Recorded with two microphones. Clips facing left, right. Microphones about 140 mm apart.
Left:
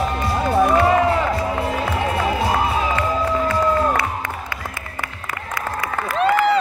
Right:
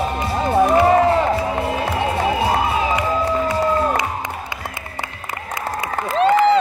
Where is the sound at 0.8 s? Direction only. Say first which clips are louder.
Right 2 dB; 40° right (ahead or behind).